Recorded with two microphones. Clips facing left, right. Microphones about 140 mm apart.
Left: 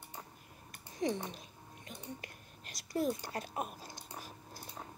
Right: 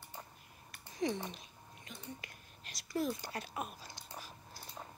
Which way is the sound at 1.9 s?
50° left (ahead or behind).